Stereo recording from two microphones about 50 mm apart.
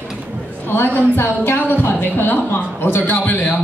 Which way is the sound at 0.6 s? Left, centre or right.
Left.